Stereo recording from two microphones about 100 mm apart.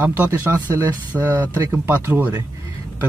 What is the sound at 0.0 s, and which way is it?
Speech, 20° right (ahead or behind).